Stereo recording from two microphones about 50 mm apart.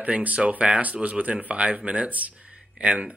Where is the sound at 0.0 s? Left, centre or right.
Right.